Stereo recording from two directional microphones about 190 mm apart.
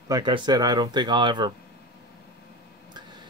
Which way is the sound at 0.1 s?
20° right (ahead or behind).